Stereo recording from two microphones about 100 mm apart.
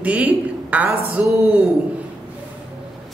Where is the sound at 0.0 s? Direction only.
15° right (ahead or behind).